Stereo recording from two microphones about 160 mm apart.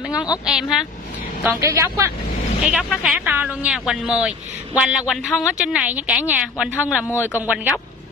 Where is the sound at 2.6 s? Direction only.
5° right (ahead or behind).